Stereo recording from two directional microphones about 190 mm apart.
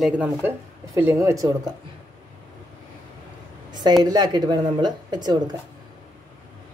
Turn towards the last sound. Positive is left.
turn(degrees=-20)  # may be behind; listen again after turning